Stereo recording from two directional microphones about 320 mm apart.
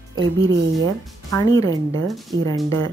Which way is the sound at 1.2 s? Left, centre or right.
Centre.